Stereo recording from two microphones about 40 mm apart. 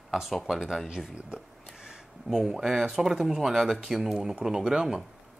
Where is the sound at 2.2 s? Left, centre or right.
Right.